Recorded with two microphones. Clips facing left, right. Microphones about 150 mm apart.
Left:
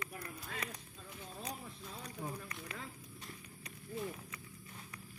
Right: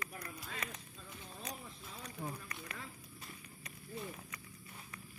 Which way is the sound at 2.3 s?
10° left (ahead or behind).